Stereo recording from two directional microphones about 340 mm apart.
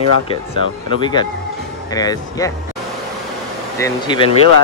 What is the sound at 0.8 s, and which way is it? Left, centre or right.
Speech, centre.